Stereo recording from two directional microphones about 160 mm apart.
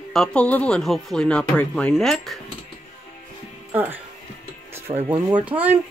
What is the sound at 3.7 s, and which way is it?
Speech, 10° right (ahead or behind).